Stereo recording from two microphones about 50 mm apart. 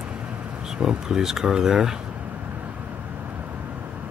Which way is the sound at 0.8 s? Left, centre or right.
Centre.